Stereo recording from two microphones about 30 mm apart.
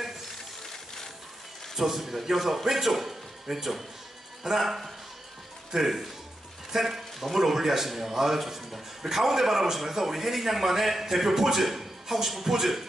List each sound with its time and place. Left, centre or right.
1.8 s a man's voice: centre
6.7 s a sound: centre
7.3 s a man's voice: centre